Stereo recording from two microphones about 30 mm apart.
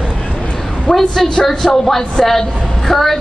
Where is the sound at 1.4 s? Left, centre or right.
Centre.